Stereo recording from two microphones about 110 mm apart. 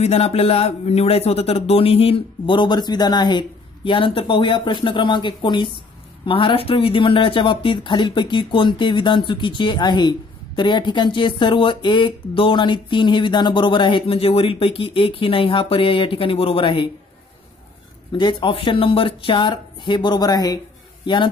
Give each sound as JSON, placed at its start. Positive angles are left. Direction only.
{"t": 0.0, "sound": "speech", "side_deg": 70}
{"t": 18.1, "sound": "speech", "side_deg": 50}